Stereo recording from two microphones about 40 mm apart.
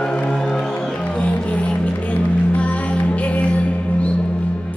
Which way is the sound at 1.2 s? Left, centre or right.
Left.